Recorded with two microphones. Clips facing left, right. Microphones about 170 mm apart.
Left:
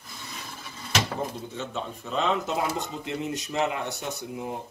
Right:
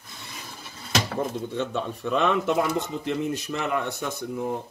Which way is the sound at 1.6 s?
65° right (ahead or behind).